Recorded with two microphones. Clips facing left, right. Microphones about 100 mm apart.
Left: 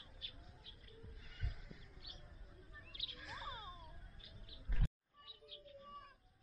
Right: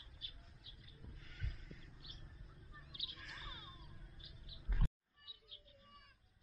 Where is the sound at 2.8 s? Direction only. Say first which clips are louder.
Even; 20° right (ahead or behind).